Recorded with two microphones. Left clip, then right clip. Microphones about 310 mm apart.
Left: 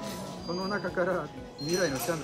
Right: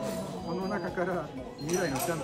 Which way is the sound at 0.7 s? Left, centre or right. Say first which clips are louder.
Left 4 dB; centre.